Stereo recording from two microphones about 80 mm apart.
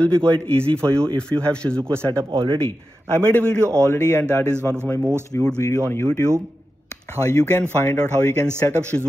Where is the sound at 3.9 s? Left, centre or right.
Left.